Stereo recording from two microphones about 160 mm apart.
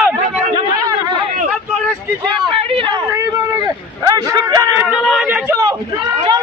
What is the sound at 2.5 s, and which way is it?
Speech, 35° right (ahead or behind).